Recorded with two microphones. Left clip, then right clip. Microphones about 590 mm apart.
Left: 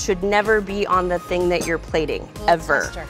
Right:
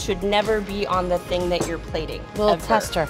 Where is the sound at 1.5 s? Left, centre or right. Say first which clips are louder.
Left 4 dB; left.